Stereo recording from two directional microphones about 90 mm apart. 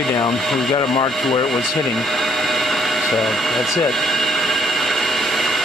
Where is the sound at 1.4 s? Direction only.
5° left (ahead or behind).